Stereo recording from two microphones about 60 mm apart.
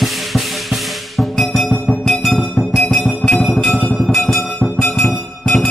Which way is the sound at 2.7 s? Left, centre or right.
Centre.